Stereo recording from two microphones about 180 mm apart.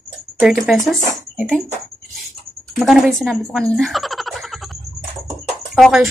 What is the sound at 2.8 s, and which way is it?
Speech, centre (ahead or behind).